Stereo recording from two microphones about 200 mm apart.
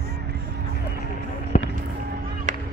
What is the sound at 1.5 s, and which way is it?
Fireworks, 40° left (ahead or behind).